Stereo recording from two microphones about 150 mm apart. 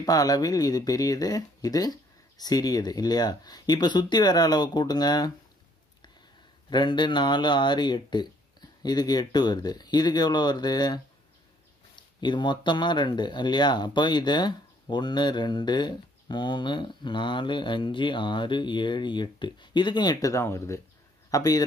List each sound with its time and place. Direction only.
0.0 s speech: 25° left (ahead or behind)
6.7 s speech: 30° left (ahead or behind)